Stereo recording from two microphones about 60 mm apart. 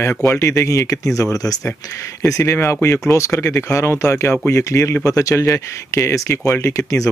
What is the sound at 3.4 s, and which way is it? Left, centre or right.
Speech, left.